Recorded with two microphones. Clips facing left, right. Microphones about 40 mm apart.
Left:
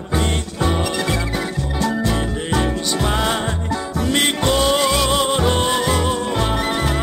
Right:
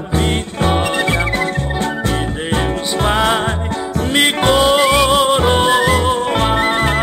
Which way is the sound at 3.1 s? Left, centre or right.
Right.